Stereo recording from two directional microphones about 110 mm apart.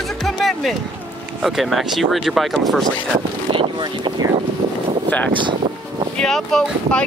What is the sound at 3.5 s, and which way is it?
Speech, 50° right (ahead or behind).